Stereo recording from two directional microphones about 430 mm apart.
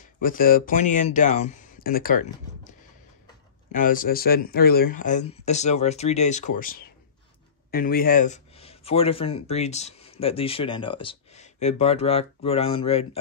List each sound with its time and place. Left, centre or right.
0.2 s speech: centre
3.7 s speech: centre